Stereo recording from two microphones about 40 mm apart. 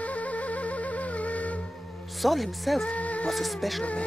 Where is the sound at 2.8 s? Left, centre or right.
Left.